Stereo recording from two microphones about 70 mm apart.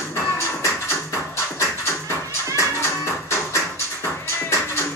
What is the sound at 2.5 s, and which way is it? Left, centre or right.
Music, left.